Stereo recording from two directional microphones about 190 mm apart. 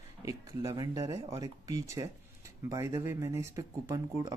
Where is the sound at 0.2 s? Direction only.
20° right (ahead or behind).